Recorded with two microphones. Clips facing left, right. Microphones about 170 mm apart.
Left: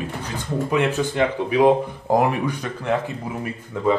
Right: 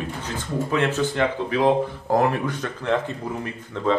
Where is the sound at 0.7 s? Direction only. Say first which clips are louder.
Left 1 dB; 15° left (ahead or behind).